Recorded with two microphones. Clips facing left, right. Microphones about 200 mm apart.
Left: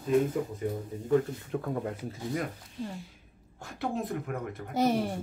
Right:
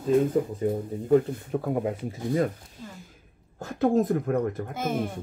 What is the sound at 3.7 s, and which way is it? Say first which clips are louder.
Speech: right 10 dB; 45° right (ahead or behind).